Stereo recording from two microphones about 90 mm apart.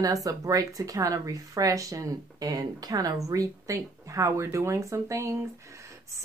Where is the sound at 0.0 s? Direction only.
40° right (ahead or behind).